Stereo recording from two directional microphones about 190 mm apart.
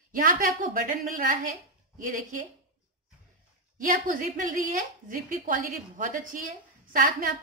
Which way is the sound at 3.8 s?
45° right (ahead or behind).